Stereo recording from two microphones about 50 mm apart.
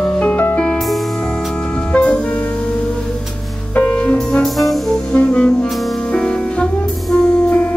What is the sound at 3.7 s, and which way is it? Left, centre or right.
Music, left.